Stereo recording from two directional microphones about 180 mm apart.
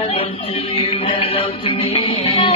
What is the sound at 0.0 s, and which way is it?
Music, 35° left (ahead or behind).